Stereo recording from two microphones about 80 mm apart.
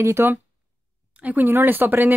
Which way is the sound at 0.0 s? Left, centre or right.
Right.